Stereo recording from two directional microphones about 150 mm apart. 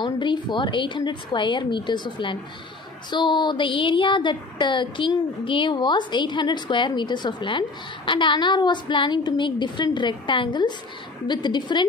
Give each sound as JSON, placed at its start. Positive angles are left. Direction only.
{"t": 0.0, "sound": "speech", "side_deg": 30}